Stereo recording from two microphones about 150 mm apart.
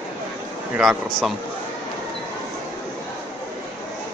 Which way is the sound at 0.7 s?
5° right (ahead or behind).